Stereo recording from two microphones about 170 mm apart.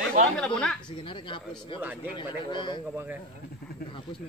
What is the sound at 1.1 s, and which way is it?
Speech, 30° left (ahead or behind).